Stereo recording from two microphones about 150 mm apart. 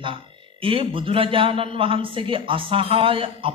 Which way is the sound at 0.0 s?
35° right (ahead or behind).